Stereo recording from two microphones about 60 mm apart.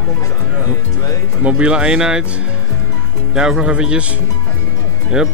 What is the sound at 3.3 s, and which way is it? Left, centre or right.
Speech, centre.